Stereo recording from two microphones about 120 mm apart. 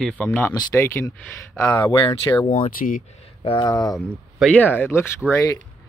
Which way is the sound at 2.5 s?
65° left (ahead or behind).